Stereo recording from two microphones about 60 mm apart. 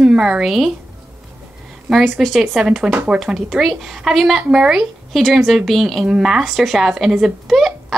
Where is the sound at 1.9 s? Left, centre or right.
Centre.